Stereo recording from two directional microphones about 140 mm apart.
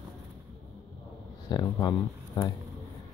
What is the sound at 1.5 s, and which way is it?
Speech, 30° left (ahead or behind).